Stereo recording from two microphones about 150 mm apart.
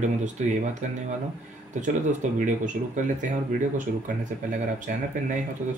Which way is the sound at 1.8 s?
55° right (ahead or behind).